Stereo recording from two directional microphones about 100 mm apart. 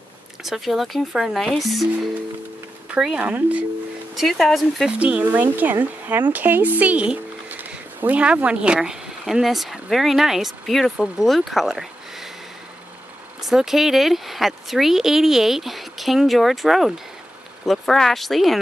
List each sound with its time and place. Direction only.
0.4 s a woman's voice: centre (ahead or behind)
4.1 s a woman's voice: centre (ahead or behind)
4.9 s speech: 15° right (ahead or behind)
13.5 s a woman's voice: 5° right (ahead or behind)